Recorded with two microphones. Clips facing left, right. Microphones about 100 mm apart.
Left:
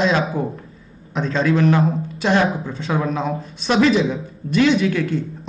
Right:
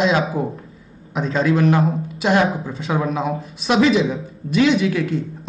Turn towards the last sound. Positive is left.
turn(degrees=0)  # may be behind; listen again after turning